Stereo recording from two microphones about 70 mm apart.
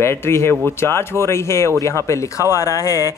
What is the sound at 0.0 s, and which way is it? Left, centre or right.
Speech, left.